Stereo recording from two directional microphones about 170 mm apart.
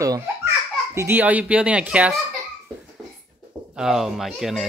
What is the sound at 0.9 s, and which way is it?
Speech, 10° right (ahead or behind).